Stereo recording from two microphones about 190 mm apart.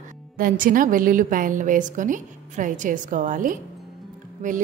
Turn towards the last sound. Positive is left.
turn(degrees=-40)  # may be behind; listen again after turning